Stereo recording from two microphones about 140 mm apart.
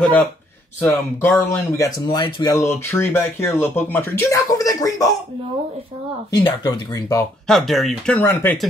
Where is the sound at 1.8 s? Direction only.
30° left (ahead or behind).